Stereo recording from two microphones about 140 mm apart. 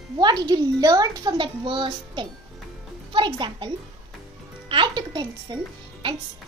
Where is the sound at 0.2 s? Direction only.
30° right (ahead or behind).